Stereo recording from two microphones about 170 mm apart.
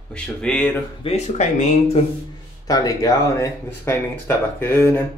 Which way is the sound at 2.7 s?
20° left (ahead or behind).